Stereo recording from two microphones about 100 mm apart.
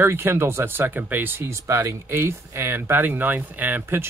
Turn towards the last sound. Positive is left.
turn(degrees=-25)  # may be behind; listen again after turning